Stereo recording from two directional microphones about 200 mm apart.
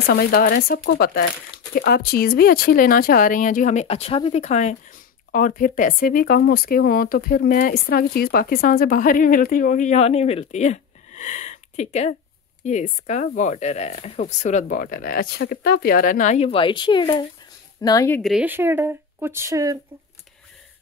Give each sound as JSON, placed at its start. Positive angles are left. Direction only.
{"t": 0.0, "sound": "speech", "side_deg": 50}
{"t": 18.2, "sound": "speech", "side_deg": -5}